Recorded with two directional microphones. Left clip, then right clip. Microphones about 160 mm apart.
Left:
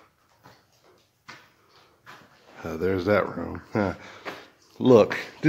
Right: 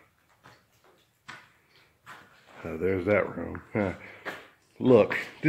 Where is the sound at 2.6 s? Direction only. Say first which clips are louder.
Left 2 dB; 10° left (ahead or behind).